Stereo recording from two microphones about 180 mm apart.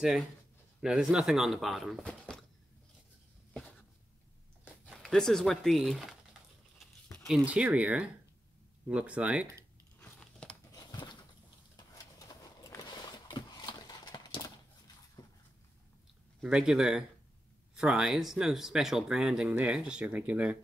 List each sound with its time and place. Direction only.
0.7 s speech: 5° right (ahead or behind)
4.9 s speech: 5° left (ahead or behind)
9.9 s crumpling: 5° left (ahead or behind)
10.7 s a sound: 25° left (ahead or behind)
16.3 s speech: 5° right (ahead or behind)